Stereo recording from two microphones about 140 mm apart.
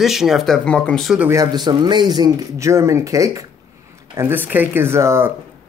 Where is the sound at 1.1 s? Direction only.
15° right (ahead or behind).